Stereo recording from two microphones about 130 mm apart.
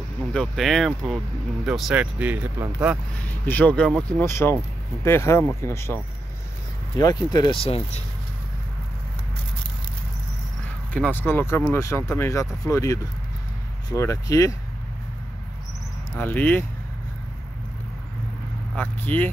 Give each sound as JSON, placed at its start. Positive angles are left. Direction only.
{"t": 0.3, "sound": "speech", "side_deg": 5}
{"t": 3.2, "sound": "speech", "side_deg": 15}
{"t": 7.0, "sound": "speech", "side_deg": 30}
{"t": 10.9, "sound": "speech", "side_deg": 15}
{"t": 16.2, "sound": "speech", "side_deg": 15}
{"t": 18.8, "sound": "speech", "side_deg": 15}